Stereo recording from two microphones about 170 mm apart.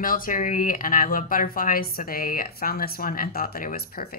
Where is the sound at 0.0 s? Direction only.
55° left (ahead or behind).